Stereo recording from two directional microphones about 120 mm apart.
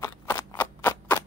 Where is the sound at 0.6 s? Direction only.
15° left (ahead or behind).